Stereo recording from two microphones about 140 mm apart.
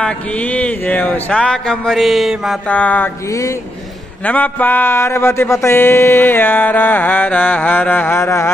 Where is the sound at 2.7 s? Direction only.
10° left (ahead or behind).